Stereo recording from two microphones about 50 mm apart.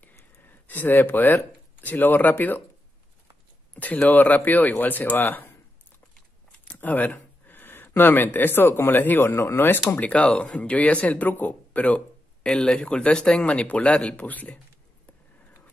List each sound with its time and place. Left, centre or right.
0.0 s speech: left
3.7 s speech: left
6.6 s speech: left
9.8 s speech: left
12.4 s speech: centre
13.5 s speech: left